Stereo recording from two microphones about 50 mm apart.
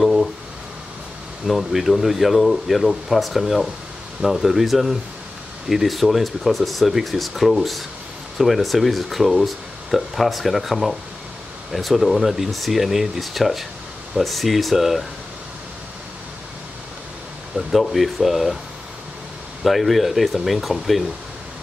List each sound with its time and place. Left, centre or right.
0.0 s a sound: centre
1.5 s speech: centre
17.6 s speech: centre
19.6 s speech: centre